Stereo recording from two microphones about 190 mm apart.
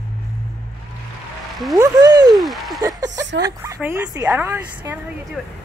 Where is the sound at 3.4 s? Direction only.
15° right (ahead or behind).